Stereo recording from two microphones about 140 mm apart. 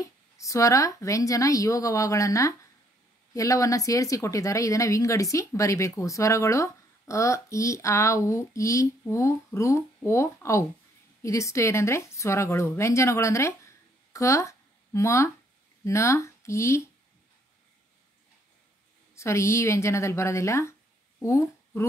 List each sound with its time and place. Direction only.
0.0 s a woman's voice: 25° left (ahead or behind)
19.1 s speech: 20° left (ahead or behind)